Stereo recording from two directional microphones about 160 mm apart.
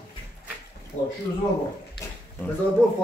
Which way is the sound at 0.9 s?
50° left (ahead or behind).